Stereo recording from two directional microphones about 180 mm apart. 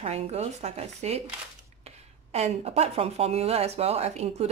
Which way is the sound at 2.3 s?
35° right (ahead or behind).